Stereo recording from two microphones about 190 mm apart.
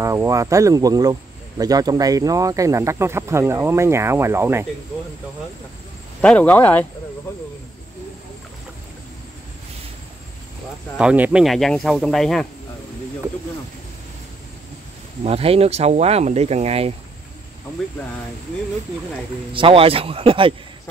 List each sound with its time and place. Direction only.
0.0 s speech: 15° right (ahead or behind)
6.2 s speech: 10° left (ahead or behind)
11.0 s speech: 5° right (ahead or behind)
15.2 s speech: 30° right (ahead or behind)
19.5 s a man's voice: 30° right (ahead or behind)